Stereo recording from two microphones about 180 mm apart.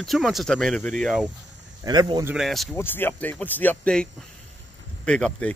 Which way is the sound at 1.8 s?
25° right (ahead or behind).